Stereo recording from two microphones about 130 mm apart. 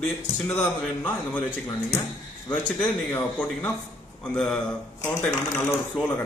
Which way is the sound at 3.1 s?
15° left (ahead or behind).